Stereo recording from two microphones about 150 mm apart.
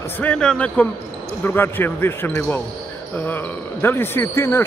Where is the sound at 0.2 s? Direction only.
5° left (ahead or behind).